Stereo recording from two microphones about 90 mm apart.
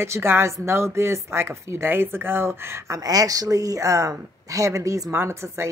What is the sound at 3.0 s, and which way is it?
Speech, 40° right (ahead or behind).